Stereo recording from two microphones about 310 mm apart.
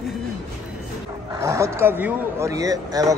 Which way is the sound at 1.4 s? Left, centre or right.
Centre.